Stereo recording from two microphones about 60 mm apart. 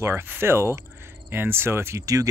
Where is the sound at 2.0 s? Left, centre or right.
Right.